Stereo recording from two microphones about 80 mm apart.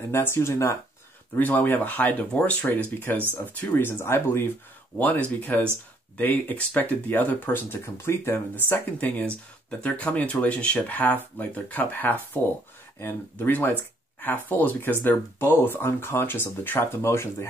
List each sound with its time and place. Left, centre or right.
0.1 s speech: left
1.3 s speech: left
9.2 s speech: centre
13.4 s speech: left